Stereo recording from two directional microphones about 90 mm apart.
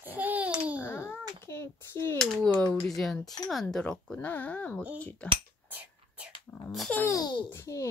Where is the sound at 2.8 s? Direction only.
5° left (ahead or behind).